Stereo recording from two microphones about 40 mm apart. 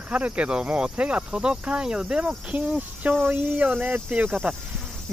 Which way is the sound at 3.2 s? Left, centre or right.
Right.